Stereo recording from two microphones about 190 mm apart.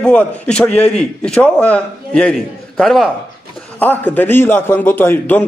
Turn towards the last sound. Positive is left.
turn(degrees=10)  # may be behind; listen again after turning